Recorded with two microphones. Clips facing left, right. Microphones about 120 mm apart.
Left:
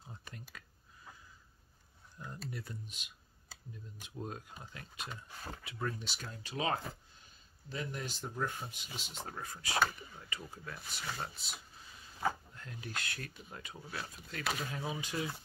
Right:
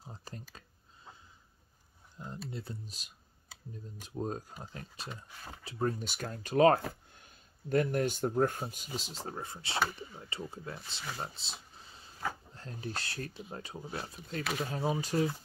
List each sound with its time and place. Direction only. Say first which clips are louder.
0.0 s a sound: right 4 dB; 35° right (ahead or behind)
2.1 s typing: right 3 dB; 25° right (ahead or behind)
4.0 s speech: right 7 dB; 35° right (ahead or behind)
14.4 s speech: right 2 dB; centre (ahead or behind)
14.7 s speech: right 7 dB; 35° right (ahead or behind)